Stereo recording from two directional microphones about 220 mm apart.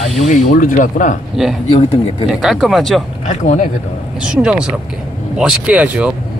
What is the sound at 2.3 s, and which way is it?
Speech, centre (ahead or behind).